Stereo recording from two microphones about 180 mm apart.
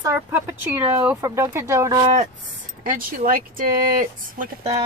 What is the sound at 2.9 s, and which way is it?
Speech, 50° right (ahead or behind).